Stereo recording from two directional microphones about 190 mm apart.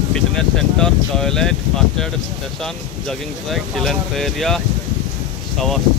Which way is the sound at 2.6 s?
Centre (ahead or behind).